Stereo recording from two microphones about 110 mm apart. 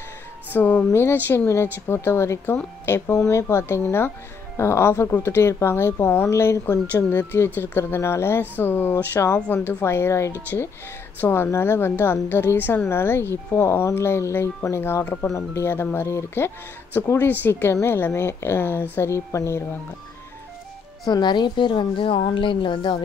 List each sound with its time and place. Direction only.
0.5 s a woman's voice: 15° left (ahead or behind)
21.1 s a woman's voice: 40° left (ahead or behind)